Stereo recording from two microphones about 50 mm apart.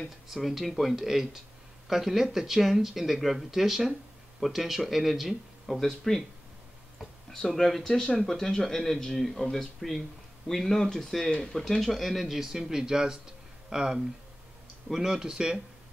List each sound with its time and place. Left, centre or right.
0.3 s speech: centre
8.0 s speech: left
8.3 s speech: centre